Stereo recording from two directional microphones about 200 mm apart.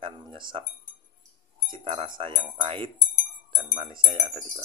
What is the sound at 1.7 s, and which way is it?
Speech, 25° right (ahead or behind).